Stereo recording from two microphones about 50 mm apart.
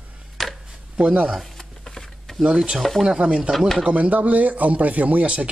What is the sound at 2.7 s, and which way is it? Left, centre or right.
Speech, centre.